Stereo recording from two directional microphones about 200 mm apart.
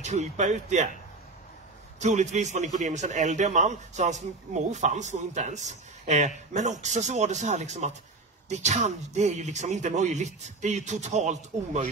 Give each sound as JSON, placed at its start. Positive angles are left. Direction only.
{"t": 0.0, "sound": "a man's voice", "side_deg": -35}
{"t": 2.0, "sound": "a man's voice", "side_deg": -35}